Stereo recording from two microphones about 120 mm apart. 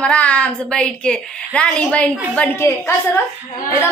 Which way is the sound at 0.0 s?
10° left (ahead or behind).